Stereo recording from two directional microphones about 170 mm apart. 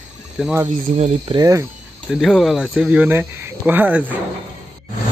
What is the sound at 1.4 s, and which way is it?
Speech, 20° right (ahead or behind).